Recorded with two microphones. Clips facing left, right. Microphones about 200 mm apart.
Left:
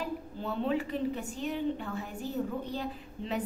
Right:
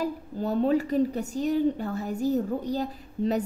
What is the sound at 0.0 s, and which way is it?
A woman's voice, 40° right (ahead or behind).